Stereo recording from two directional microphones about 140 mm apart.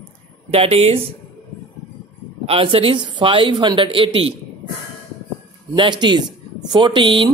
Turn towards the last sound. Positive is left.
turn(degrees=-35)  # may be behind; listen again after turning